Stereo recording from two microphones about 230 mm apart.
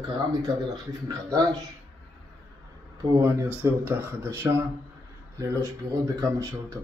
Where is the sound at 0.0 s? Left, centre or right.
Centre.